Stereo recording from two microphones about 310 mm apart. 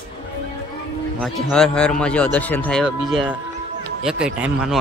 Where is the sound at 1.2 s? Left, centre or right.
Centre.